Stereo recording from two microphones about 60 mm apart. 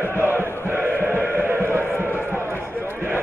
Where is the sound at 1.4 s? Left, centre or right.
Right.